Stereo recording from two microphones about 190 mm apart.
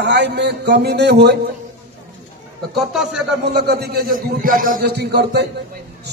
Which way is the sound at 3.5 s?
60° right (ahead or behind).